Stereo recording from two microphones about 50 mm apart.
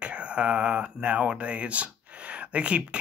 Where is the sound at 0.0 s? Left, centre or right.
Right.